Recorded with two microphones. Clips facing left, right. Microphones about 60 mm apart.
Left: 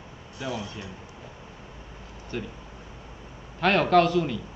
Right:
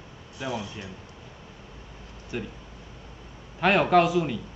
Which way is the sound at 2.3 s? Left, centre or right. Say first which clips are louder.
Even; centre.